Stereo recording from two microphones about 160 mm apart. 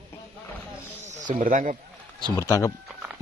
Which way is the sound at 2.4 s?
20° left (ahead or behind).